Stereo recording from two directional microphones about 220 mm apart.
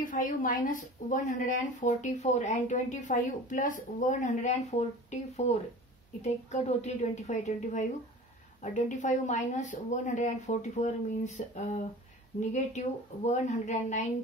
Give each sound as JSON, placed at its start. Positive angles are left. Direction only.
{"t": 0.0, "sound": "a woman's voice", "side_deg": 35}